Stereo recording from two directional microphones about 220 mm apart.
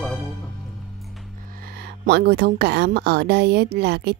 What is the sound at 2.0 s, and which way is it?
A woman's voice, 50° right (ahead or behind).